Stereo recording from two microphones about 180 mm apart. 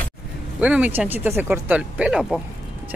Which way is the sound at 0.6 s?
5° right (ahead or behind).